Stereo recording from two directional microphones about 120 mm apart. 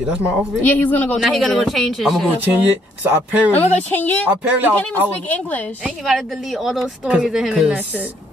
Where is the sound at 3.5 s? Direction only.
55° left (ahead or behind).